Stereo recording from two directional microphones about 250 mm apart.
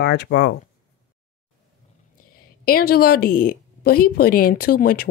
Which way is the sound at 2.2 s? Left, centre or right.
Left.